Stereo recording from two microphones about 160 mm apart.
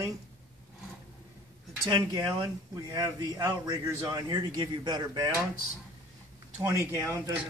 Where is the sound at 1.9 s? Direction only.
25° right (ahead or behind).